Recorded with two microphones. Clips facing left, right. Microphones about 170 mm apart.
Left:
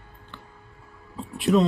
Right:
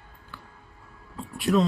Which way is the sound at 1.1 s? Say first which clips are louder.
Left 3 dB; centre (ahead or behind).